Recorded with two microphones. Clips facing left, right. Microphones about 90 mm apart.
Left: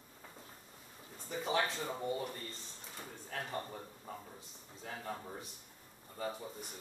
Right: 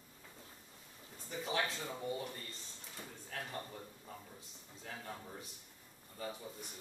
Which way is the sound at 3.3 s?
30° left (ahead or behind).